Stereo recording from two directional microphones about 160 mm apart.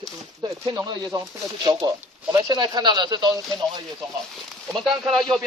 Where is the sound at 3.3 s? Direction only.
Centre (ahead or behind).